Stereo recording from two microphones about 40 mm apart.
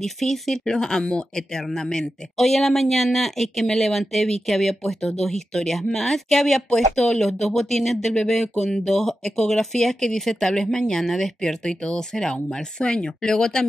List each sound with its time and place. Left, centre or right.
0.0 s speech: centre